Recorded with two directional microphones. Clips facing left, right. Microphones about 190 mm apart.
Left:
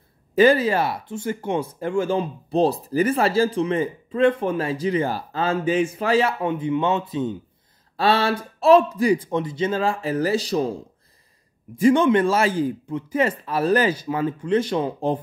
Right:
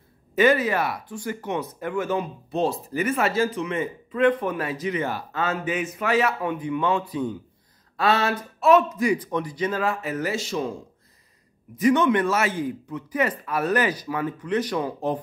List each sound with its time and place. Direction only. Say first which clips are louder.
0.4 s speech: left 3 dB; 30° left (ahead or behind)
11.7 s speech: left 3 dB; 30° left (ahead or behind)